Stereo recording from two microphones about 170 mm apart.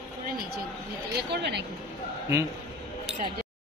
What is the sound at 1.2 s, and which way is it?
Speech, 80° right.